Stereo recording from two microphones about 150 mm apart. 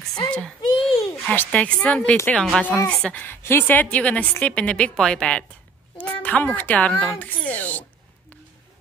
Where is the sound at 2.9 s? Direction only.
5° left (ahead or behind).